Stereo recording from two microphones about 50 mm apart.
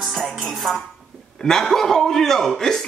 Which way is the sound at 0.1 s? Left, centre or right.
Centre.